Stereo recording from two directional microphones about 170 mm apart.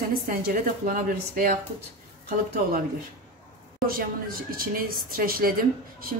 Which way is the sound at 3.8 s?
60° right (ahead or behind).